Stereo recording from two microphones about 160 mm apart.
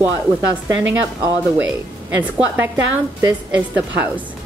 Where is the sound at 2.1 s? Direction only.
10° right (ahead or behind).